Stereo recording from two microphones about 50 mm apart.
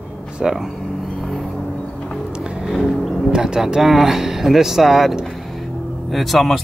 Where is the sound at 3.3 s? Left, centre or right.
Centre.